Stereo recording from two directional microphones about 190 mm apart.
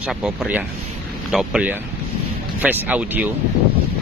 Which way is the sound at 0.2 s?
5° right (ahead or behind).